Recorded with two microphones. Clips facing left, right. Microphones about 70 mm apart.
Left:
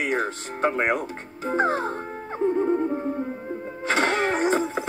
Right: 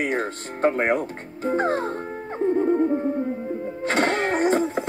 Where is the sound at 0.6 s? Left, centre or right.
Right.